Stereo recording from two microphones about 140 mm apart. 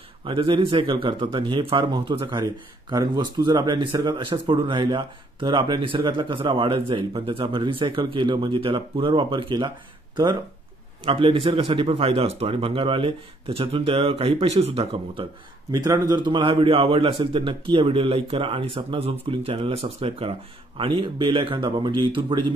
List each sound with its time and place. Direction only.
0.2 s speech: 35° right (ahead or behind)
11.1 s speech: 40° right (ahead or behind)
15.7 s speech: 30° right (ahead or behind)